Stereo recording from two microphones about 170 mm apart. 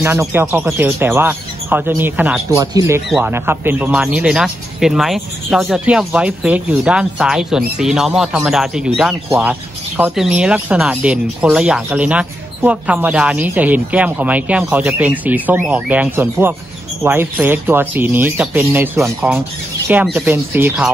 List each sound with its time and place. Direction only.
0.0 s speech: 15° right (ahead or behind)
2.5 s speech: 20° right (ahead or behind)
3.1 s speech: 10° right (ahead or behind)